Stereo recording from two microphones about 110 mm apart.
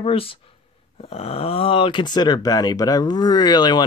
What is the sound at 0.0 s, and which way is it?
Speech, 60° left (ahead or behind).